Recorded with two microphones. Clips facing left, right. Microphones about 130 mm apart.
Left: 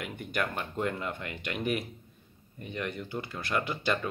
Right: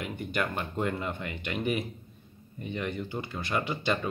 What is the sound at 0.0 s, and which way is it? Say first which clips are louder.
Speech: right 1 dB; centre (ahead or behind).